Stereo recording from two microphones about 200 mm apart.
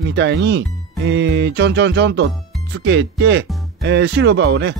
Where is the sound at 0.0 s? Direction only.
65° right (ahead or behind).